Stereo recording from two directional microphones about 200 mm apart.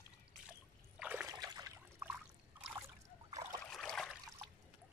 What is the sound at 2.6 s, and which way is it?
Trickle, 5° right (ahead or behind).